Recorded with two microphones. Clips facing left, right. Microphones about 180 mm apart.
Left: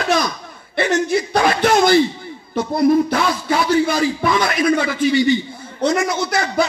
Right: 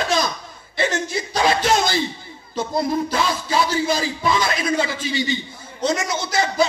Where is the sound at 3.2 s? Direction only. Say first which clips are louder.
Left 2 dB; 60° left (ahead or behind).